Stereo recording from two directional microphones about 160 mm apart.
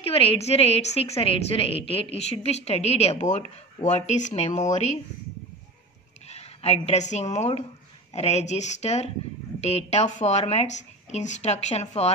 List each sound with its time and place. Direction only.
0.0 s a woman's voice: 35° left (ahead or behind)
6.2 s speech: 45° left (ahead or behind)